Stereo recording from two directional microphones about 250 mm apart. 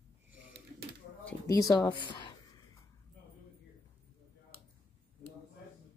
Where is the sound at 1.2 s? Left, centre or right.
Centre.